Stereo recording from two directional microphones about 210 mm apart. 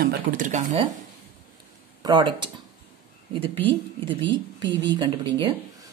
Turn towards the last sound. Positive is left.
turn(degrees=-20)  # may be behind; listen again after turning